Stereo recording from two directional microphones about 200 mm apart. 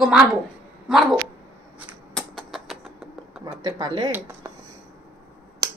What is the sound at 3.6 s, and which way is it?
Speech, 20° right (ahead or behind).